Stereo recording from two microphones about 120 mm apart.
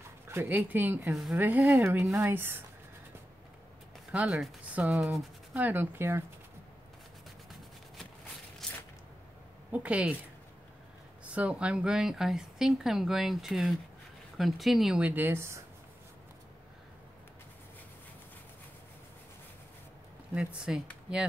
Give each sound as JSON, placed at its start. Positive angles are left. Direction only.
{"t": 0.3, "sound": "speech", "side_deg": -20}
{"t": 4.1, "sound": "speech", "side_deg": -10}
{"t": 5.6, "sound": "speech", "side_deg": -15}
{"t": 8.6, "sound": "a sound", "side_deg": 5}
{"t": 9.7, "sound": "speech", "side_deg": -10}
{"t": 11.2, "sound": "speech", "side_deg": -10}
{"t": 20.3, "sound": "speech", "side_deg": -5}